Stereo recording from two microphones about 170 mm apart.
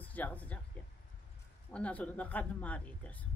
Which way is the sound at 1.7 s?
10° left (ahead or behind).